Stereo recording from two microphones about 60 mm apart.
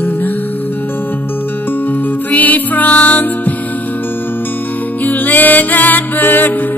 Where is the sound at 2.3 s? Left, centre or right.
Left.